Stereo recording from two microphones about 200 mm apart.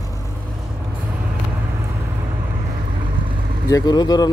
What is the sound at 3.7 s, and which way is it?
Speech, 20° left (ahead or behind).